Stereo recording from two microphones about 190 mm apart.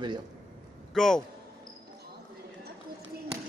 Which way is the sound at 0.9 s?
Centre (ahead or behind).